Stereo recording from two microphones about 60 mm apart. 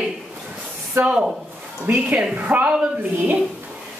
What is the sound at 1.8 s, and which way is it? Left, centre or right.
Speech, right.